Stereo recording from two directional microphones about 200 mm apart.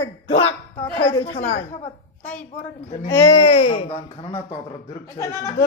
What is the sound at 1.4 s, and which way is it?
A woman's voice, 35° left (ahead or behind).